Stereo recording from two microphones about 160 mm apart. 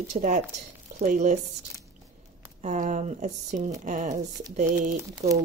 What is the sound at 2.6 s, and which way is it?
Speech, 50° right (ahead or behind).